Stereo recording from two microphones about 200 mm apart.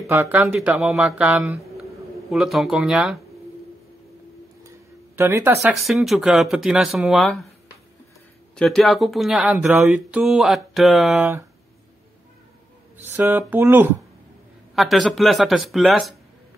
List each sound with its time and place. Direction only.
0.0 s speech: 15° right (ahead or behind)
0.6 s speech: centre (ahead or behind)
4.6 s speech: 15° right (ahead or behind)
8.5 s speech: centre (ahead or behind)
12.9 s speech: 10° right (ahead or behind)